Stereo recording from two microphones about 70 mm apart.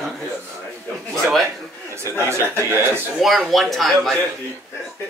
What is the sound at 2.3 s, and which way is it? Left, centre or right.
Speech, right.